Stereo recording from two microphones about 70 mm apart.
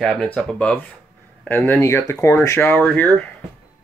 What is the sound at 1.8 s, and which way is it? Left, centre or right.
Speech, left.